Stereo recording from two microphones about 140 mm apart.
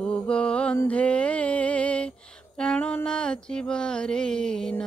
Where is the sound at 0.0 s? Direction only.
5° left (ahead or behind).